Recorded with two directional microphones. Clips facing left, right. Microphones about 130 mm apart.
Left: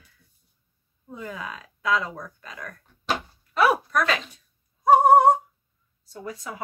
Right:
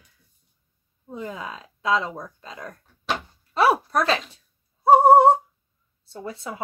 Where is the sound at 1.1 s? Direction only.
25° right (ahead or behind).